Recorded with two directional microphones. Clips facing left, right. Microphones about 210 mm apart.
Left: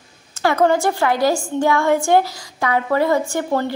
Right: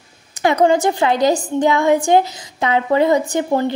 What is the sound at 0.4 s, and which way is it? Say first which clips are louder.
A woman's voice: right 2 dB; 20° right (ahead or behind).